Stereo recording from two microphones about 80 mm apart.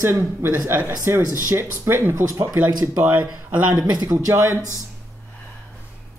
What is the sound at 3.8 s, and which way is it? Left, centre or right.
Speech, right.